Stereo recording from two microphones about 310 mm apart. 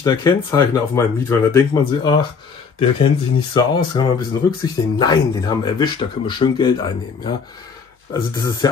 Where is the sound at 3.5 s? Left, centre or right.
Centre.